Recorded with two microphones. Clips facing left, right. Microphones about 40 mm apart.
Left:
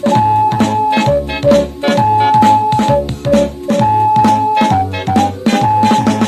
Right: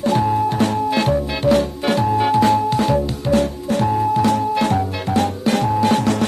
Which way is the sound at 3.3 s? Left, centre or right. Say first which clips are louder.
Left 7 dB; left.